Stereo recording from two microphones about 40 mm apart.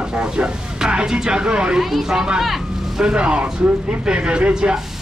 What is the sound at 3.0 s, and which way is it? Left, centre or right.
Speech, right.